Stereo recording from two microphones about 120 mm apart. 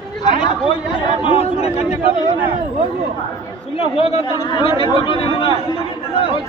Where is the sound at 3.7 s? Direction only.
50° left (ahead or behind).